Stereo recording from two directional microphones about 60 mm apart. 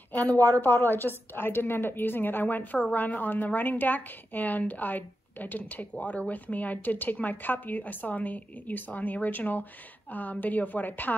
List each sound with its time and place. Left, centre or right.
0.1 s a woman's voice: left